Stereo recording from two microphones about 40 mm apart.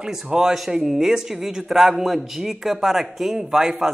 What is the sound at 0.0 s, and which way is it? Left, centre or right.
A man's voice, centre.